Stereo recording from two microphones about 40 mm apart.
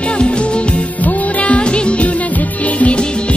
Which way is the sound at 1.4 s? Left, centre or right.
Left.